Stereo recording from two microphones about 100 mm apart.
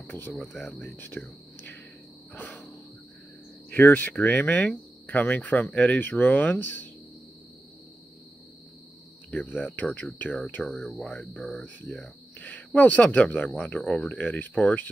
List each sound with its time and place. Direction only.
0.0 s speech: 20° left (ahead or behind)
0.4 s speech: centre (ahead or behind)
0.9 s speech: 20° left (ahead or behind)
2.3 s cricket: 20° left (ahead or behind)
3.7 s speech: 20° left (ahead or behind)
9.3 s speech: 15° left (ahead or behind)
12.4 s speech: 15° left (ahead or behind)